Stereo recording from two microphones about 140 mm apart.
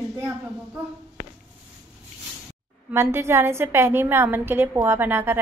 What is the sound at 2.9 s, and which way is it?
A woman's voice, 20° right (ahead or behind).